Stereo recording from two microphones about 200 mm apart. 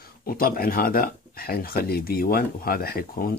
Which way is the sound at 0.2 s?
45° left (ahead or behind).